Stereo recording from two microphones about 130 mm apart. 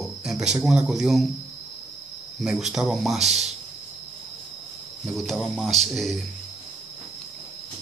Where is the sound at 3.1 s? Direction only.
55° right (ahead or behind).